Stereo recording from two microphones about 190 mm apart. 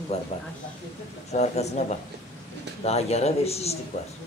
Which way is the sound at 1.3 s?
35° left (ahead or behind).